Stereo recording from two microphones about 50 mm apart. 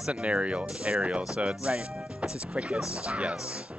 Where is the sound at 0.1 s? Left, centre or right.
Right.